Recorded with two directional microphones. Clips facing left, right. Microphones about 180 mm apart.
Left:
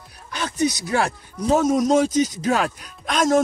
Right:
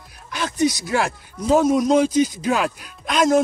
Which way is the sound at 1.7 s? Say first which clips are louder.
Right 1 dB; 40° left (ahead or behind).